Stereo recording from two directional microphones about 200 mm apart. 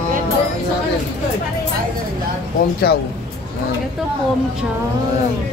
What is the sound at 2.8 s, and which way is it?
Speech, 50° left (ahead or behind).